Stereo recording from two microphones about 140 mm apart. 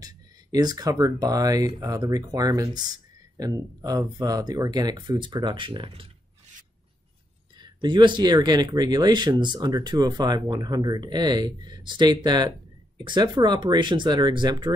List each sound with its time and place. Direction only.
0.0 s speech: 30° right (ahead or behind)
7.5 s speech: 30° right (ahead or behind)